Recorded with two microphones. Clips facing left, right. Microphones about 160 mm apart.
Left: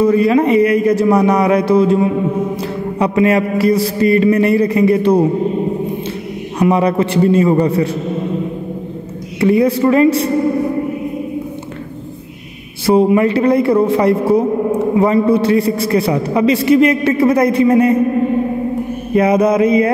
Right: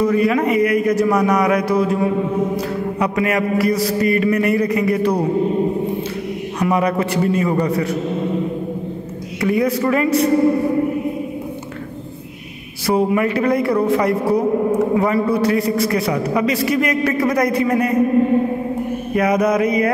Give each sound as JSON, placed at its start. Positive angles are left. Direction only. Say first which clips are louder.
{"t": 0.0, "sound": "a man's voice", "louder": "left 4 dB", "side_deg": 30}
{"t": 6.6, "sound": "a man's voice", "louder": "left 5 dB", "side_deg": 30}
{"t": 9.4, "sound": "a man's voice", "louder": "left 5 dB", "side_deg": 30}
{"t": 12.8, "sound": "a man's voice", "louder": "left 6 dB", "side_deg": 25}
{"t": 19.1, "sound": "a man's voice", "louder": "left 5 dB", "side_deg": 25}